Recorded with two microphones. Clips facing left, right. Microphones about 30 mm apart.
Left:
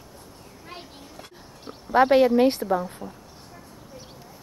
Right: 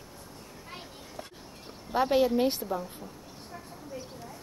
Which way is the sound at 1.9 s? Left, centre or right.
Left.